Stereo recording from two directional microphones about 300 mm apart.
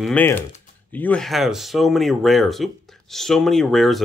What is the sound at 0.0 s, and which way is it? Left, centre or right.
Speech, centre.